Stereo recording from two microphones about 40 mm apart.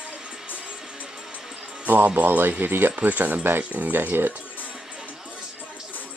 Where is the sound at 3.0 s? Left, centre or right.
Right.